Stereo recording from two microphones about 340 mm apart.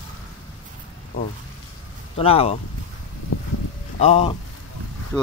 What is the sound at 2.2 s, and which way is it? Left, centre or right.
Speech, centre.